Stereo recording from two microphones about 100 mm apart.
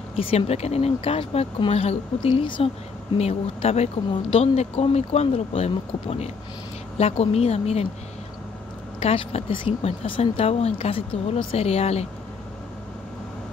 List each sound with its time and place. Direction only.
0.1 s a woman's voice: 70° left (ahead or behind)
3.2 s speech: 90° left
9.0 s speech: 75° left (ahead or behind)